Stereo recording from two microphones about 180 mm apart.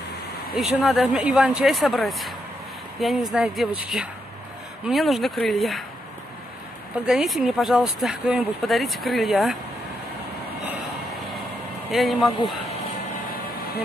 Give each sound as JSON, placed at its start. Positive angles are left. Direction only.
{"t": 0.6, "sound": "speech", "side_deg": 0}
{"t": 7.1, "sound": "speech", "side_deg": 0}
{"t": 11.9, "sound": "speech", "side_deg": 0}
{"t": 13.3, "sound": "vehicle", "side_deg": 55}